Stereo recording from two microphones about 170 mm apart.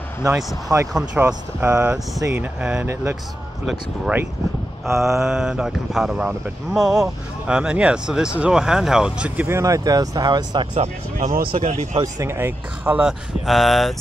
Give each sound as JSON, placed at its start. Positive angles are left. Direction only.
{"t": 0.9, "sound": "speech", "side_deg": -10}
{"t": 3.6, "sound": "speech", "side_deg": 0}
{"t": 11.1, "sound": "speech", "side_deg": -55}
{"t": 11.5, "sound": "speech", "side_deg": -40}
{"t": 12.0, "sound": "speech", "side_deg": -15}